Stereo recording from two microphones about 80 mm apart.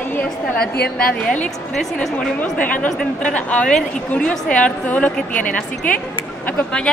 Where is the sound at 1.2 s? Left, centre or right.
Centre.